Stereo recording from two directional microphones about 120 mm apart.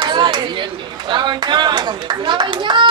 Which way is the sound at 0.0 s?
40° right (ahead or behind).